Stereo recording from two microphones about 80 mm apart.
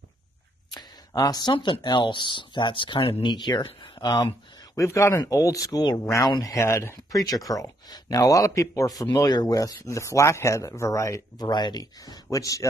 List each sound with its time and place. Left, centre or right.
0.7 s speech: left
4.7 s speech: left
7.2 s speech: left
11.3 s speech: left